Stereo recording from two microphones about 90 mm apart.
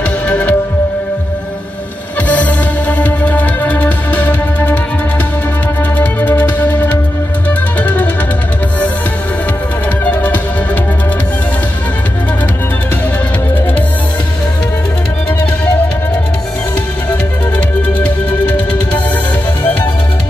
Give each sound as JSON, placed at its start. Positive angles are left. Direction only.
{"t": 0.3, "sound": "music", "side_deg": 15}
{"t": 2.2, "sound": "music", "side_deg": 15}
{"t": 5.9, "sound": "music", "side_deg": 20}
{"t": 10.0, "sound": "music", "side_deg": 15}
{"t": 17.9, "sound": "music", "side_deg": 15}